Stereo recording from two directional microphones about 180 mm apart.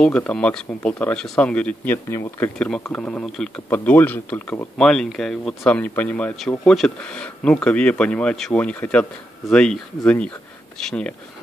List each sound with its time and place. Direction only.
0.0 s speech: 5° left (ahead or behind)